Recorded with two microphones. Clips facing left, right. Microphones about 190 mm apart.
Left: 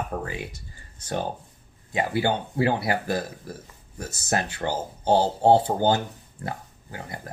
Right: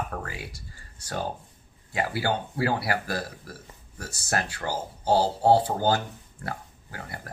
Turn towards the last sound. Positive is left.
turn(degrees=20)  # may be behind; listen again after turning